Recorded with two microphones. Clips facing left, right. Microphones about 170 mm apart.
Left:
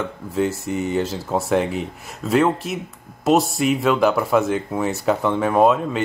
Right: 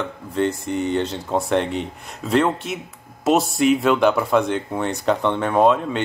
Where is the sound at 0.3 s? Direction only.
5° left (ahead or behind).